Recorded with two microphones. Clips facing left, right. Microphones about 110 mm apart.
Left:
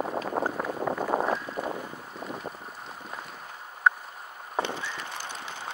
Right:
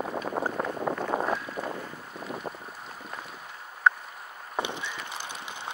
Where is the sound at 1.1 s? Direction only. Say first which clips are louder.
Left 3 dB; 50° left (ahead or behind).